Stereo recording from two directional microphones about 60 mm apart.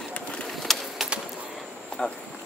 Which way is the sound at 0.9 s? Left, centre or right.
Centre.